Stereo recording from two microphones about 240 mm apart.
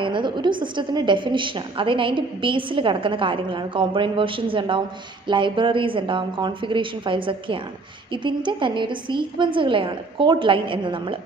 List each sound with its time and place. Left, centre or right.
0.0 s a woman's voice: centre